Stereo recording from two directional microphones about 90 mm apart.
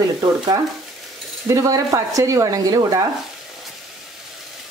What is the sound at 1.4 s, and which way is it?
Speech, 40° right (ahead or behind).